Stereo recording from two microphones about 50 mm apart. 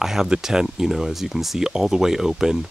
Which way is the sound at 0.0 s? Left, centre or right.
Centre.